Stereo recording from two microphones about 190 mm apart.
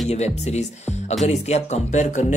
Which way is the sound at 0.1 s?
35° left (ahead or behind).